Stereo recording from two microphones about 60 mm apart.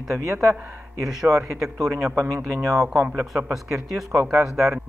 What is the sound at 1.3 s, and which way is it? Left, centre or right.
Speech, right.